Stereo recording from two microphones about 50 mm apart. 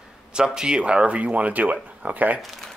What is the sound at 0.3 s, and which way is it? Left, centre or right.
Speech, centre.